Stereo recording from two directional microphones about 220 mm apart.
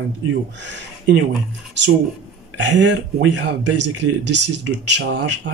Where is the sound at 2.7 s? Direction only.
55° right (ahead or behind).